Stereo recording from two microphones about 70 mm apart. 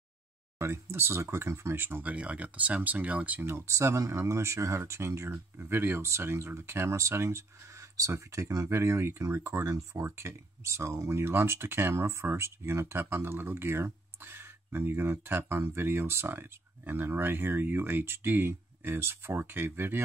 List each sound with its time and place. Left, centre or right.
0.6 s speech: right
2.1 s speech: centre
3.4 s speech: right
10.0 s speech: right